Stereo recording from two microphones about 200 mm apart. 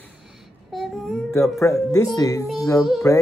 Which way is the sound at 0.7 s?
Centre (ahead or behind).